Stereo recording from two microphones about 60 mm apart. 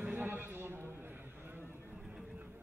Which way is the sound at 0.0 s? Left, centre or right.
Right.